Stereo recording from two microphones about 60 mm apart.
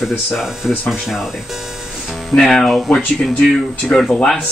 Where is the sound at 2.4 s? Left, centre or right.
Centre.